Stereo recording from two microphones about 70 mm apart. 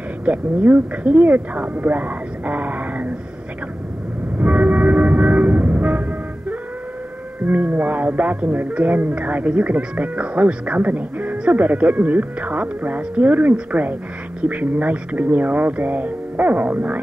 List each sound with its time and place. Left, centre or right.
0.2 s speech: right
4.4 s train: right
7.4 s speech: right